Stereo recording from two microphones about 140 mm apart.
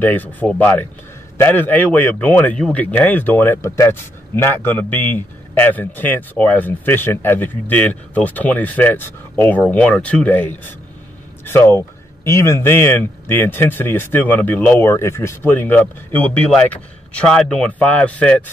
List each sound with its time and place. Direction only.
0.0 s a man's voice: 15° left (ahead or behind)